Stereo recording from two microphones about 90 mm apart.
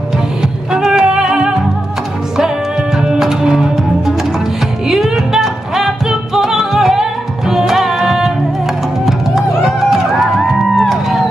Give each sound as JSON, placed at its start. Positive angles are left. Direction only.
{"t": 0.4, "sound": "music", "side_deg": -5}
{"t": 3.0, "sound": "music", "side_deg": -5}